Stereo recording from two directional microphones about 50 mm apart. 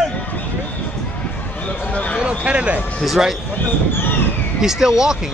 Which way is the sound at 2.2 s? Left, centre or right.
Right.